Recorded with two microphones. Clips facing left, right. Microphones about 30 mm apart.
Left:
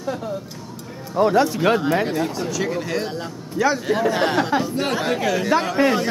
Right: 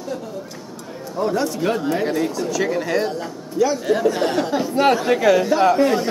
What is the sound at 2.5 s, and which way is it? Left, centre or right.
Speech, centre.